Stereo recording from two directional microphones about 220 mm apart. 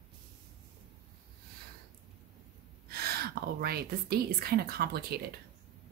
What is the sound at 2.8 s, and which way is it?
A woman's voice, 45° right (ahead or behind).